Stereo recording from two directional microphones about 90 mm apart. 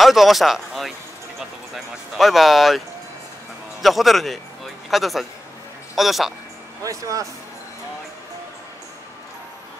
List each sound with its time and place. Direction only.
0.0 s speech: centre (ahead or behind)
3.8 s speech: centre (ahead or behind)
6.8 s speech: 40° right (ahead or behind)